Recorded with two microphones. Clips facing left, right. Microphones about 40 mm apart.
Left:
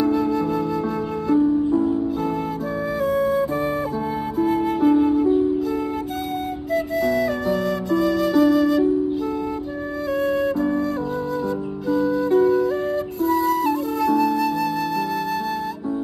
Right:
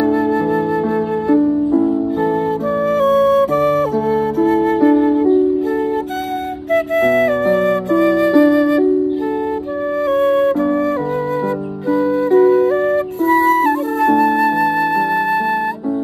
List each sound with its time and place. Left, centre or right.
0.0 s flute: right
1.4 s music: right
3.1 s music: right
7.1 s flute: right
10.6 s music: right
11.9 s music: right
13.2 s flute: right